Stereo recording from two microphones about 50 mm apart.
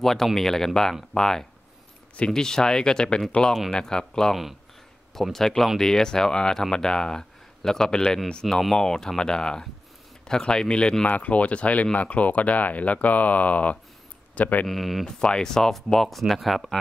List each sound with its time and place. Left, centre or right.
0.0 s speech: centre; by 14.7 s left
14.7 s speech: centre
15.0 s speech: centre